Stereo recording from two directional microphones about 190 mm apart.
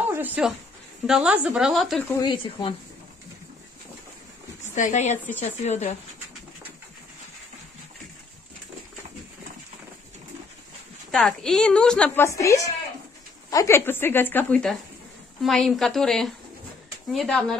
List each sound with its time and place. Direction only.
0.1 s a sound: 10° right (ahead or behind)
1.0 s a woman's voice: 5° right (ahead or behind)
2.1 s speech: 20° left (ahead or behind)
4.7 s a woman's voice: 40° left (ahead or behind)
11.1 s a woman's voice: 5° left (ahead or behind)